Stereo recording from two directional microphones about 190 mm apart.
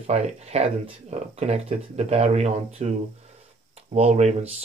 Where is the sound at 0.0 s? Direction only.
35° right (ahead or behind).